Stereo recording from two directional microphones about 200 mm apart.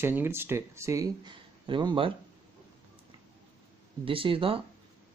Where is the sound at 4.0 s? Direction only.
25° right (ahead or behind).